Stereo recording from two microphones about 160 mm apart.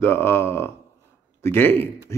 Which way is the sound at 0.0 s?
15° left (ahead or behind).